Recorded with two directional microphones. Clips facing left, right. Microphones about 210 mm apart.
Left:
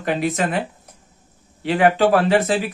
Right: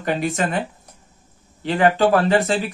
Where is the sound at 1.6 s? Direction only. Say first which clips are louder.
Left 1 dB; 5° left (ahead or behind).